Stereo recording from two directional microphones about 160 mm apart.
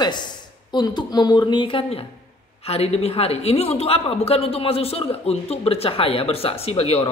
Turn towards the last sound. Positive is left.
turn(degrees=40)  # may be behind; listen again after turning